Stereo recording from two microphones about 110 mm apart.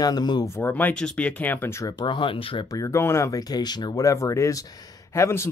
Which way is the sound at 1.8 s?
35° left (ahead or behind).